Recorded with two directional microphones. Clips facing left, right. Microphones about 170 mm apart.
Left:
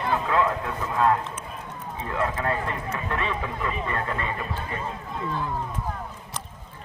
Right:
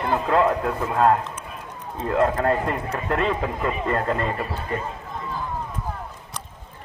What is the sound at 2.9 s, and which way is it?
Speech, 35° right (ahead or behind).